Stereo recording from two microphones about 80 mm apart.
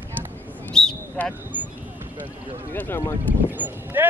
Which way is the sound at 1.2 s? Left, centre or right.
Centre.